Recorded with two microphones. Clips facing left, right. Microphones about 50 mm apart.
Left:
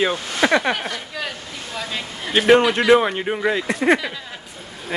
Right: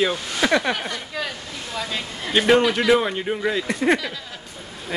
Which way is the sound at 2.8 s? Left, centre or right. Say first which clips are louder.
Left 3 dB; centre.